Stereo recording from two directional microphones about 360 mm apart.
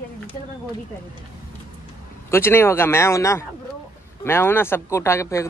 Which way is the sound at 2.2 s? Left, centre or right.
Centre.